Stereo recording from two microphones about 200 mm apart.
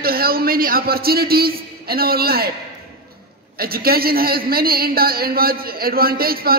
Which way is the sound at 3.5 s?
50° right (ahead or behind).